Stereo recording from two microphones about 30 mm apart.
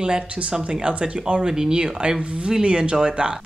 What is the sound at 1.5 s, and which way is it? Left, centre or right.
A woman's voice, right.